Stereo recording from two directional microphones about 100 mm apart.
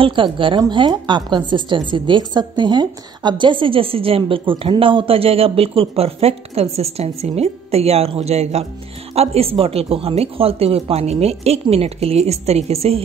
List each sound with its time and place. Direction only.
0.0 s a woman's voice: 55° right (ahead or behind); by 13.0 s 90° right